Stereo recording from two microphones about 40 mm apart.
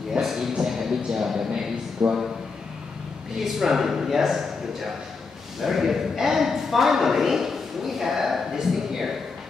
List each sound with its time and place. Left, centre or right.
0.1 s a sound: centre
2.0 s a man's voice: centre
3.3 s a man's voice: centre